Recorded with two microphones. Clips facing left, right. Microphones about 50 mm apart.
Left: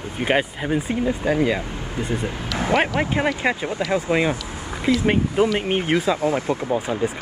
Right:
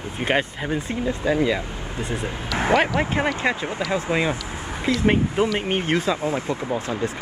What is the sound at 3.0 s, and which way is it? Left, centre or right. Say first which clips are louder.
Speech: left 1 dB; centre.